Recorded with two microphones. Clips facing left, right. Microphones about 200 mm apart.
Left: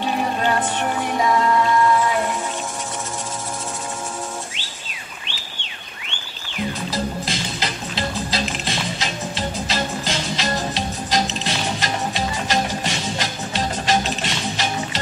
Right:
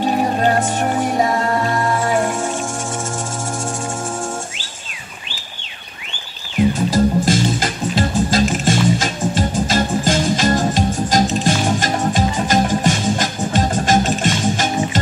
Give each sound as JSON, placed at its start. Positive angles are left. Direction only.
{"t": 0.0, "sound": "music", "side_deg": -40}
{"t": 6.9, "sound": "music", "side_deg": -45}